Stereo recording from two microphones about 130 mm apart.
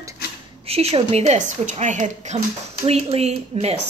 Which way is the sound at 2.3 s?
45° right (ahead or behind).